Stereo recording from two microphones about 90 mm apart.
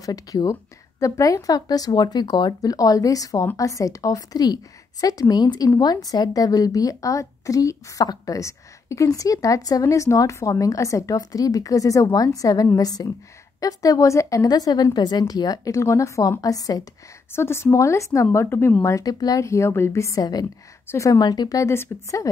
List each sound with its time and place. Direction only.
0.0 s a woman's voice: 40° left (ahead or behind)
17.3 s speech: 30° left (ahead or behind)